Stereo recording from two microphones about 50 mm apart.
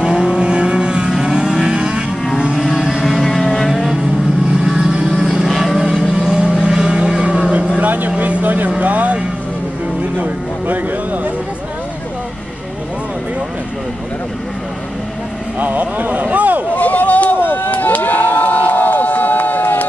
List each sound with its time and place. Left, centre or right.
0.0 s vehicle: centre
3.1 s vehicle: centre
7.8 s vehicle: right
10.1 s music: right
15.6 s a sound: right
16.7 s a sound: left
17.5 s run: left